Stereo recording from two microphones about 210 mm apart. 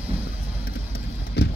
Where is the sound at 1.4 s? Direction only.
50° left (ahead or behind).